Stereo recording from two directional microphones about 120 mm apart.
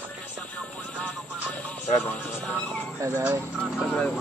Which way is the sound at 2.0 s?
15° left (ahead or behind).